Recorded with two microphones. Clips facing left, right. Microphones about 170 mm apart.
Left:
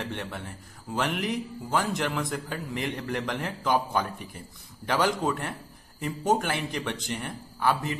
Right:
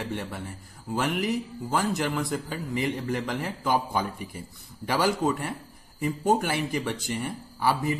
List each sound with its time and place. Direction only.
0.0 s speech: 5° right (ahead or behind)